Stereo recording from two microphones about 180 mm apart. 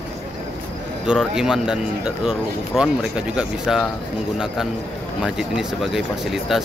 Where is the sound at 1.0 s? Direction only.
5° right (ahead or behind).